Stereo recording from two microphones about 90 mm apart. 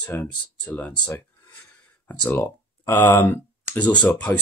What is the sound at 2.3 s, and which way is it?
Speech, 25° left (ahead or behind).